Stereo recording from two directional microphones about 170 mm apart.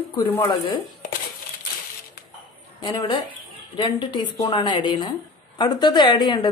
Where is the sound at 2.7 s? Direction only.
25° left (ahead or behind).